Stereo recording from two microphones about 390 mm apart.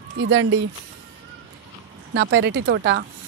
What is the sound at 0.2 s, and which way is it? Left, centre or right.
Speech, right.